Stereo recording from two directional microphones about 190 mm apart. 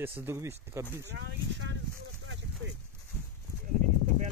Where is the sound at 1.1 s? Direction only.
70° right (ahead or behind).